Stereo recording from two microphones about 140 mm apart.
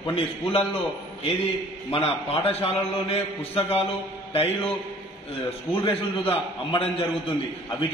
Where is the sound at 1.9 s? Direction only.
45° left (ahead or behind).